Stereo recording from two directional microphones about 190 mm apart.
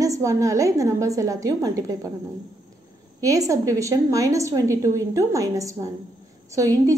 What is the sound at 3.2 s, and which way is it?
A woman's voice, 15° right (ahead or behind).